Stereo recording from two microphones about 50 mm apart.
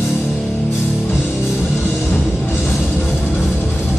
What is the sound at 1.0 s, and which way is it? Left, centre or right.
Music, left.